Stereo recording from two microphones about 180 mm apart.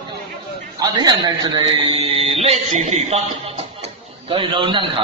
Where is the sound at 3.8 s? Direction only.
30° right (ahead or behind).